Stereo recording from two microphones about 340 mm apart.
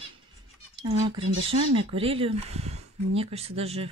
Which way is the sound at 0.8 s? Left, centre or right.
Centre.